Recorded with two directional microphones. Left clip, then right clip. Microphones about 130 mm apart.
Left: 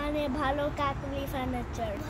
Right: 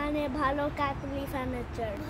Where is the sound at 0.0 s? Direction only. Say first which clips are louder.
Right 1 dB; 25° right (ahead or behind).